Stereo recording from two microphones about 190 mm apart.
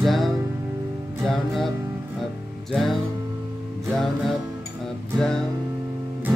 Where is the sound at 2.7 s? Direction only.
Centre (ahead or behind).